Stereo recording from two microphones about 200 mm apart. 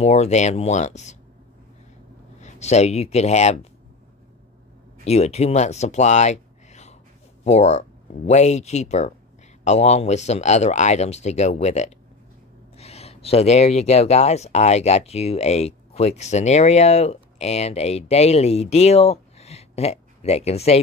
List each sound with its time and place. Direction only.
0.0 s speech: 35° left (ahead or behind)
2.4 s speech: 35° left (ahead or behind)
5.0 s speech: 30° left (ahead or behind)